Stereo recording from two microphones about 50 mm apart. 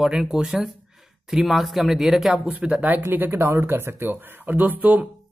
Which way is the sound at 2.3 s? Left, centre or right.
Right.